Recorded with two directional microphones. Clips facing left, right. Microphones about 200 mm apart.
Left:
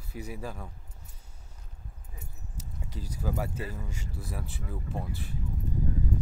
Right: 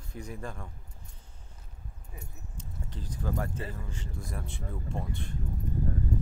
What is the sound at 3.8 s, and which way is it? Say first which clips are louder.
Speech: even; 10° left (ahead or behind).